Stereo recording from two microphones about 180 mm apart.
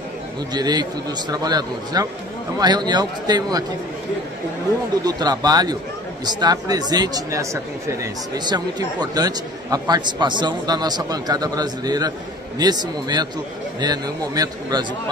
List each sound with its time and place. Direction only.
0.5 s a man's voice: 20° right (ahead or behind)
5.0 s a man's voice: 20° right (ahead or behind)